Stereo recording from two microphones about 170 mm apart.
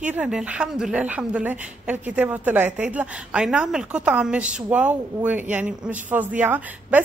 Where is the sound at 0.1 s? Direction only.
5° right (ahead or behind).